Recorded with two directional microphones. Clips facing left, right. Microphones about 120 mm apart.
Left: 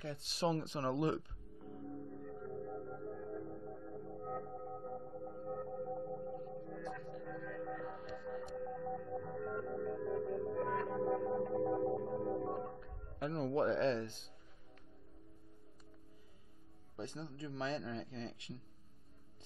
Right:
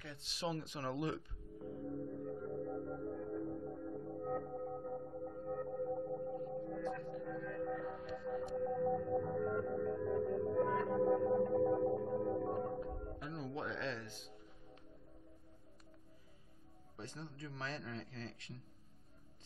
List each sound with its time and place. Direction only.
0.0 s speech: 40° left (ahead or behind)
2.6 s music: 5° right (ahead or behind)
12.7 s music: 30° right (ahead or behind)
13.2 s music: 55° left (ahead or behind); by 14.1 s 30° left (ahead or behind)
16.9 s a man's voice: 20° left (ahead or behind)